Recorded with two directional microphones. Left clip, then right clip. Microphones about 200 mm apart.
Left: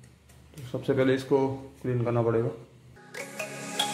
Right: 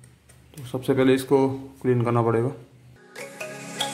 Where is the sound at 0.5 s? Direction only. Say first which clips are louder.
Right 4 dB; 20° right (ahead or behind).